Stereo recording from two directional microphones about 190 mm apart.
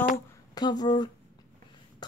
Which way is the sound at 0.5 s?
20° left (ahead or behind).